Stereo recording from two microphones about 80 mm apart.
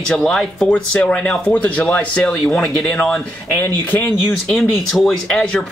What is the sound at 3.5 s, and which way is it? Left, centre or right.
Speech, left.